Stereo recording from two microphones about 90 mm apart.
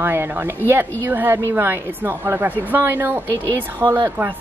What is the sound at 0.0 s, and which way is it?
Speech, 25° right (ahead or behind).